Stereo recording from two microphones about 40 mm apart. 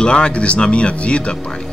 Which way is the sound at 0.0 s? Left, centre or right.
Left.